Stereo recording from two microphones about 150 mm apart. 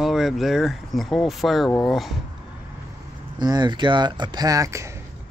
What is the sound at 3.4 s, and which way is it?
Speech, 30° right (ahead or behind).